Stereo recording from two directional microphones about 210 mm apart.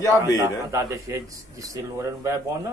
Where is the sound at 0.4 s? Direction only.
15° right (ahead or behind).